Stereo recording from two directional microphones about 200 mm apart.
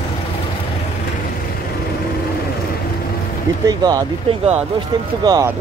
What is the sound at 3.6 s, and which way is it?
Speech, 20° right (ahead or behind).